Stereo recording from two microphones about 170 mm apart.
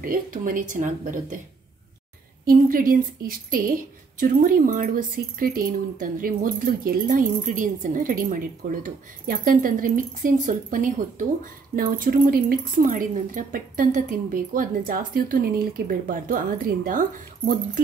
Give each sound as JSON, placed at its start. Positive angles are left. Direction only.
{"t": 0.0, "sound": "a woman's voice", "side_deg": -55}
{"t": 2.4, "sound": "a woman's voice", "side_deg": -55}